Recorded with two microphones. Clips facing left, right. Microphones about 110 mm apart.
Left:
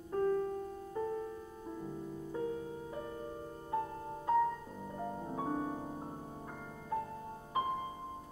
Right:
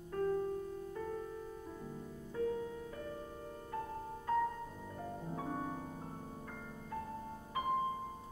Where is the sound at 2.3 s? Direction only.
20° left (ahead or behind).